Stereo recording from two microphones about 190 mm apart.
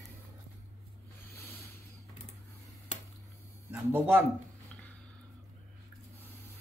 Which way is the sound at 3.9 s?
10° right (ahead or behind).